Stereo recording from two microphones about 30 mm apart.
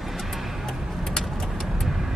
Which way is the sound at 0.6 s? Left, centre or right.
Centre.